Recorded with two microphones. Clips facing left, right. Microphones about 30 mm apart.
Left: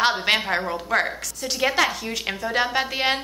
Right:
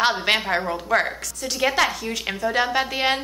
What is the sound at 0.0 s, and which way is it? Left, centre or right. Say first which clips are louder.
A woman's voice: even; centre.